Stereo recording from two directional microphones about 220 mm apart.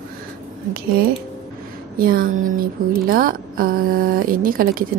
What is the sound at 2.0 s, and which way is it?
Speech, 40° right (ahead or behind).